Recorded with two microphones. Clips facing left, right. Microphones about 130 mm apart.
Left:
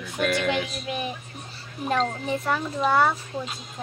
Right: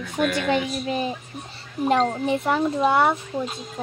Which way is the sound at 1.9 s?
30° right (ahead or behind).